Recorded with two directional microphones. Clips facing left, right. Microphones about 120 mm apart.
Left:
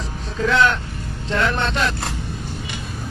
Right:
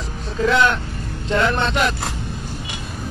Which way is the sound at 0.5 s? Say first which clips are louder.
Even; 15° right (ahead or behind).